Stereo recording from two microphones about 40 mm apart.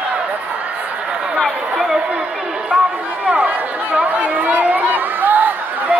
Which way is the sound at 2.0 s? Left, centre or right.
Right.